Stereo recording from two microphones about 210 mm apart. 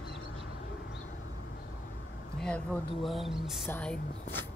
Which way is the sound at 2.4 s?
5° left (ahead or behind).